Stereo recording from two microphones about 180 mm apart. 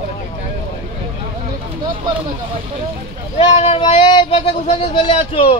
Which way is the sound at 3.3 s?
35° left (ahead or behind).